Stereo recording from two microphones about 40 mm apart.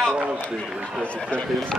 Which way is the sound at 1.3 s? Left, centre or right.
Left.